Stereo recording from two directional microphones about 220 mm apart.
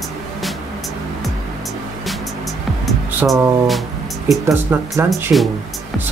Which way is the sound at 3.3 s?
Centre (ahead or behind).